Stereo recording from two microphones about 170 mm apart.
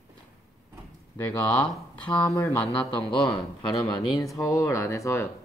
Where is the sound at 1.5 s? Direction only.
5° left (ahead or behind).